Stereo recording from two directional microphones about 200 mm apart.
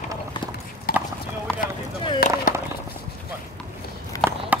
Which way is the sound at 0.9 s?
50° left (ahead or behind).